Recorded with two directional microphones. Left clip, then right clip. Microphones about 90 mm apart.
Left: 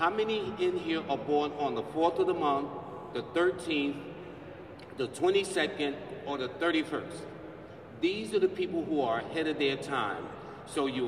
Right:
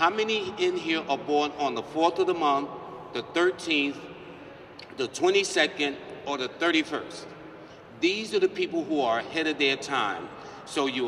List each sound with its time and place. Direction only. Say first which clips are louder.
0.0 s a man's voice: right 4 dB; 45° left (ahead or behind)
4.9 s a man's voice: right 4 dB; 45° left (ahead or behind)
8.0 s a man's voice: right 4 dB; 45° left (ahead or behind)